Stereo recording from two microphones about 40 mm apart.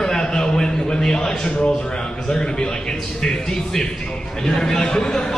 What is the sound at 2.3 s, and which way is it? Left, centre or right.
A man's voice, centre.